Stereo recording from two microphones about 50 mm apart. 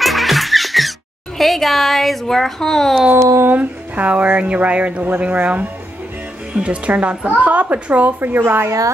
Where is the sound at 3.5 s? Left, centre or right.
Right.